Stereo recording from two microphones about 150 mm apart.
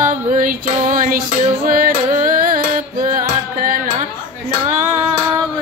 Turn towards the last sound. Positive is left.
turn(degrees=-65)  # may be behind; listen again after turning